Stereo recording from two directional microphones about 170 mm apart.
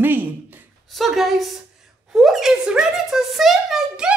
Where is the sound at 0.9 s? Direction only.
Centre (ahead or behind).